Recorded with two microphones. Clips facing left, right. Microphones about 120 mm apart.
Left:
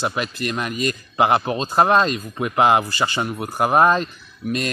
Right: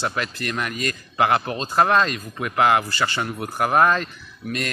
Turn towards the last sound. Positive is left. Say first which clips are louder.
# left 4 dB
turn(degrees=20)  # may be behind; listen again after turning